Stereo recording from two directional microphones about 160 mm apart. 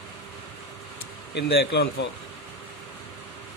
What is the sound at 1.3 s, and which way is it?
Speech, 90° left.